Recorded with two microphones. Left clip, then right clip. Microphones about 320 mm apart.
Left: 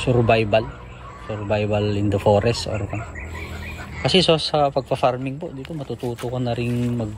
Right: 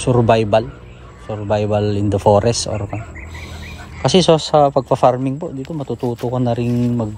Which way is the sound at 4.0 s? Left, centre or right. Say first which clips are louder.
Right 4 dB; centre.